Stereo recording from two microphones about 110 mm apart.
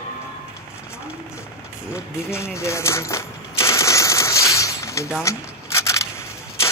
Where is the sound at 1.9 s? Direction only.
25° left (ahead or behind).